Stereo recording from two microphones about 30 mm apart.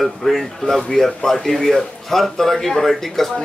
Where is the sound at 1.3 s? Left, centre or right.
Centre.